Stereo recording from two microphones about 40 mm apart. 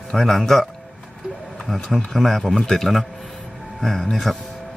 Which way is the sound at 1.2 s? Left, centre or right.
Right.